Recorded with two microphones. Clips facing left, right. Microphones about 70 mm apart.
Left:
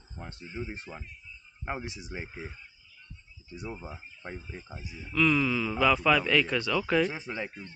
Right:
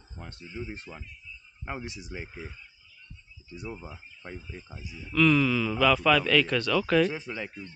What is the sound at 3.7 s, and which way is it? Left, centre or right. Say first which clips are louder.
Speech: even; centre.